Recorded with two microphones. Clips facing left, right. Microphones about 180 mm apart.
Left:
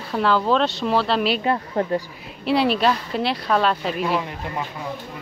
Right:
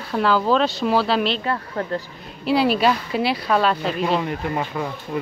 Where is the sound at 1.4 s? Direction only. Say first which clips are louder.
Left 3 dB; 20° left (ahead or behind).